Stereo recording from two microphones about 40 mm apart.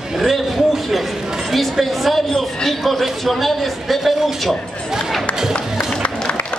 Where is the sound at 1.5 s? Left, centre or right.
Centre.